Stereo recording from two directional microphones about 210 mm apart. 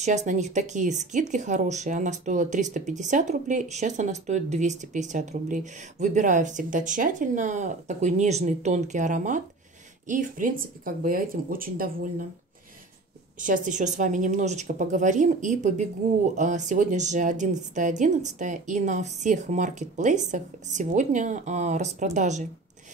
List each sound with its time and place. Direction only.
0.0 s speech: 35° right (ahead or behind)
13.4 s speech: 40° right (ahead or behind)